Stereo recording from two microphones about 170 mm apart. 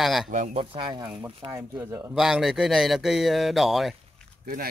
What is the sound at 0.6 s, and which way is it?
Speech, 30° right (ahead or behind).